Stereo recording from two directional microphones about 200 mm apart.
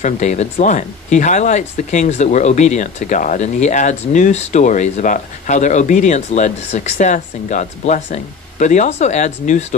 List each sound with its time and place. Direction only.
0.0 s speech: 35° left (ahead or behind)